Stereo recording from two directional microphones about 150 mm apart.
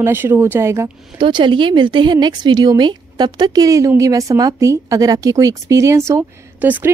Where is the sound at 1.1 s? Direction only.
35° right (ahead or behind).